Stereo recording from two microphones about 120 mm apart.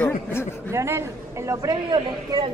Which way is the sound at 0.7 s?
20° right (ahead or behind).